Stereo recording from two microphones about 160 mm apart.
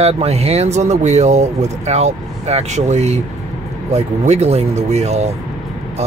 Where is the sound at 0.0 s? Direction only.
40° right (ahead or behind).